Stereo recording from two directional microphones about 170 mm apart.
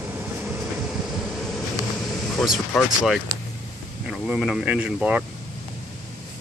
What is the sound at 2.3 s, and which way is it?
Speech, centre (ahead or behind).